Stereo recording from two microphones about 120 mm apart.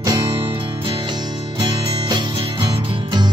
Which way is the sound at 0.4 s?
45° right (ahead or behind).